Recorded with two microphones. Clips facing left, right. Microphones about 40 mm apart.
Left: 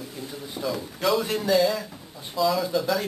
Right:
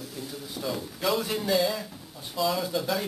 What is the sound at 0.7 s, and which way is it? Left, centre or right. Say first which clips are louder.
A man's voice: left 3 dB; centre.